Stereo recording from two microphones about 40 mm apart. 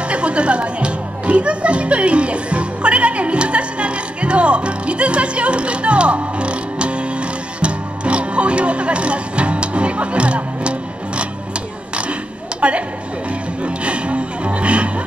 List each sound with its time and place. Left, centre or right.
0.1 s music: right
11.9 s a sound: right
13.6 s music: right